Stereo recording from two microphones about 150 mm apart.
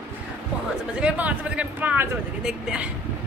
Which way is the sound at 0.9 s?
10° right (ahead or behind).